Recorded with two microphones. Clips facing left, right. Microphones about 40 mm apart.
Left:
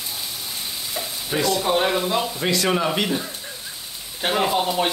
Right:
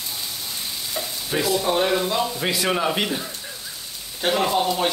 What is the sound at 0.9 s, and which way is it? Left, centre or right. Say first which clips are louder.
Stir: even; centre.